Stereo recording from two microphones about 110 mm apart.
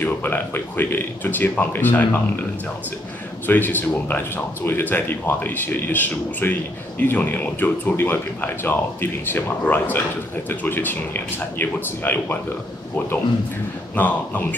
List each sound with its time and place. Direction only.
0.0 s speech: 15° left (ahead or behind)
3.4 s speech: 15° left (ahead or behind)
13.9 s speech: 15° left (ahead or behind)